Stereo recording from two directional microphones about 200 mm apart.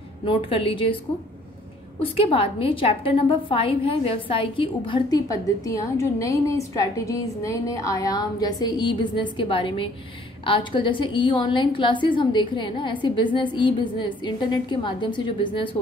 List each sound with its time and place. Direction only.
0.2 s a woman's voice: 25° left (ahead or behind)
2.0 s a woman's voice: 30° left (ahead or behind)